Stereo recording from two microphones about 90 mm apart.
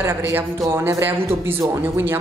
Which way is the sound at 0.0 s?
30° right (ahead or behind).